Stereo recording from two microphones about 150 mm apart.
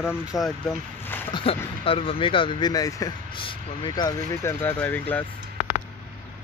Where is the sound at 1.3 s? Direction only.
40° left (ahead or behind); by 5.2 s 10° left (ahead or behind).